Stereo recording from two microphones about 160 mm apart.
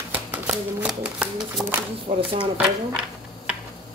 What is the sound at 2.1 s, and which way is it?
Speech, 45° right (ahead or behind).